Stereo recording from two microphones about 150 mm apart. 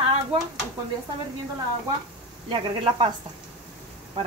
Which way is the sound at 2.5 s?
35° right (ahead or behind).